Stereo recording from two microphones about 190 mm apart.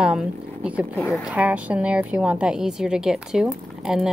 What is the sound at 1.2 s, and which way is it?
A woman's voice, 5° right (ahead or behind).